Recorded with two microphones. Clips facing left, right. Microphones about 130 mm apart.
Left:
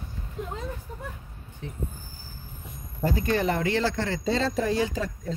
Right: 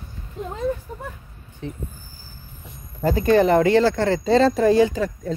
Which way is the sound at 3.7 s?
55° right (ahead or behind).